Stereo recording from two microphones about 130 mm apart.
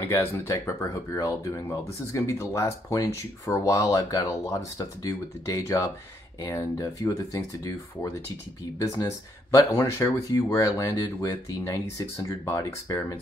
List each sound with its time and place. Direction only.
0.1 s speech: 20° left (ahead or behind)